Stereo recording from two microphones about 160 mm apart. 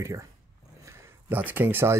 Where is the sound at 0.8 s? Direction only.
15° right (ahead or behind).